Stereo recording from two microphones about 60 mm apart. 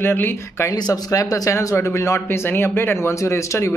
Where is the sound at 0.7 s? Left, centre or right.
Left.